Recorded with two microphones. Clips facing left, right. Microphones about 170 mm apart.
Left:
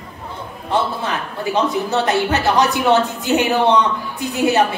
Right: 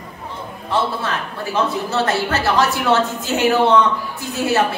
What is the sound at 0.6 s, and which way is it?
A man's voice, 20° left (ahead or behind).